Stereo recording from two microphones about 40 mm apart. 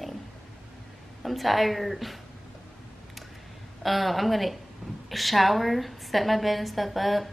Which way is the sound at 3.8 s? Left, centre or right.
Centre.